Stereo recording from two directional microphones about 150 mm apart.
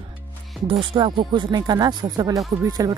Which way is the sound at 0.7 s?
35° right (ahead or behind).